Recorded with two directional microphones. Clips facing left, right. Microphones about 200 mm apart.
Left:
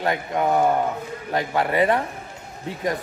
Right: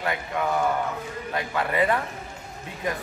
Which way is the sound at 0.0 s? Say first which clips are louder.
Left 5 dB; 35° left (ahead or behind).